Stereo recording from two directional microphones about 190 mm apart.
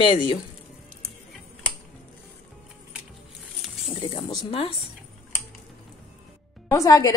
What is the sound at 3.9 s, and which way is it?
Speech, 25° left (ahead or behind).